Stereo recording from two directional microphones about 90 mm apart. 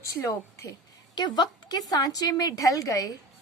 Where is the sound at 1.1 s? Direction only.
55° left (ahead or behind).